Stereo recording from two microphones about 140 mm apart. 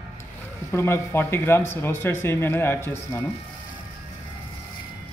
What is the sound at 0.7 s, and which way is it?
Speech, 20° left (ahead or behind).